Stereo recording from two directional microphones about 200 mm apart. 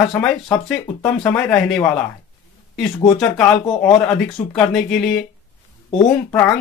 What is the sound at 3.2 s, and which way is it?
Speech, 5° left (ahead or behind).